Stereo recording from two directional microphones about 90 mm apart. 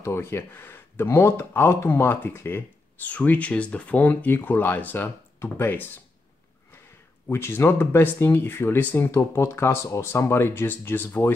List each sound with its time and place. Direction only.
0.0 s speech: 30° left (ahead or behind)
7.2 s speech: 25° left (ahead or behind)
9.1 s speech: 35° left (ahead or behind)